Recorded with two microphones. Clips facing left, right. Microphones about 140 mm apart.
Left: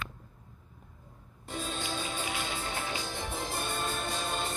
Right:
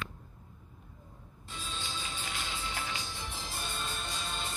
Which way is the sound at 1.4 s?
50° left (ahead or behind).